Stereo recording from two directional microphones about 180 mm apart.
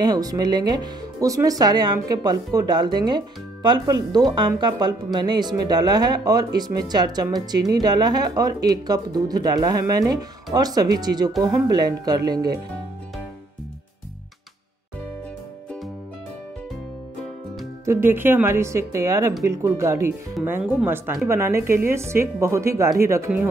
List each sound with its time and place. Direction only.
0.0 s speech: 20° right (ahead or behind)
17.8 s speech: 10° right (ahead or behind)